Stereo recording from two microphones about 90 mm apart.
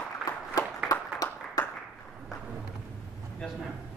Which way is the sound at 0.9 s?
40° left (ahead or behind).